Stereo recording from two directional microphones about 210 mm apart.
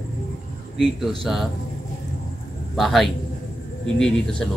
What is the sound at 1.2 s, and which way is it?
Speech, centre (ahead or behind).